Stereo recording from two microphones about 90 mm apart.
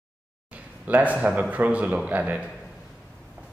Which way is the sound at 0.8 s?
15° right (ahead or behind).